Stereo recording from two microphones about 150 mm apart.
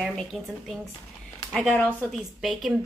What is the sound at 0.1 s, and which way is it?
Speech, 5° left (ahead or behind).